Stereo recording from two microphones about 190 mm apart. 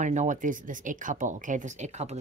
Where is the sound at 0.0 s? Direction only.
40° right (ahead or behind).